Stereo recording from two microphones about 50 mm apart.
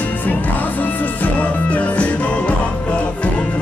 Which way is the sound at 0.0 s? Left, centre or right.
Left.